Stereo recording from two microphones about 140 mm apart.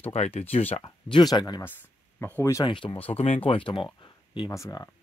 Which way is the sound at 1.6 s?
15° left (ahead or behind).